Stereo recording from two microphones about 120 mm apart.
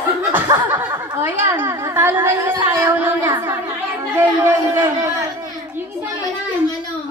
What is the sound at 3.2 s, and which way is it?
Speech, 40° right (ahead or behind).